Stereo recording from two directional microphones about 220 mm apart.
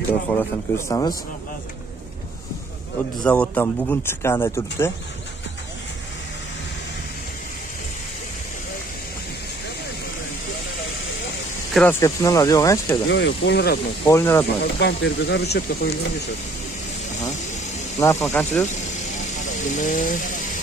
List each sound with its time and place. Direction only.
0.4 s speech: 10° left (ahead or behind)
3.3 s speech: 5° left (ahead or behind)
11.7 s speech: 10° left (ahead or behind)
13.1 s speech: 50° left (ahead or behind)
14.0 s speech: 10° left (ahead or behind)
14.6 s speech: 50° left (ahead or behind)
17.9 s speech: 10° left (ahead or behind)
19.7 s speech: 35° left (ahead or behind)